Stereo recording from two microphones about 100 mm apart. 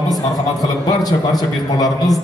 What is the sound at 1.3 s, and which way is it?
Speech, 40° left (ahead or behind).